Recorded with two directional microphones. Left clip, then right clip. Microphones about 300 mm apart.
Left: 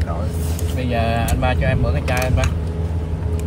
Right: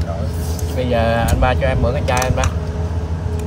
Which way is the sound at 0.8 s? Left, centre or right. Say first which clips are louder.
Right 5 dB; centre.